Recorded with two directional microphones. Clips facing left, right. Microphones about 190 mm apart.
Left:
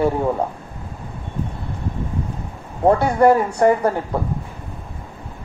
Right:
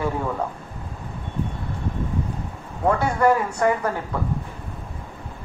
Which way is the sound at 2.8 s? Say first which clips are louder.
Left 5 dB; 35° left (ahead or behind).